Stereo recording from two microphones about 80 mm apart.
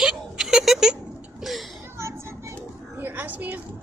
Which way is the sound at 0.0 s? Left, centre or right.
Centre.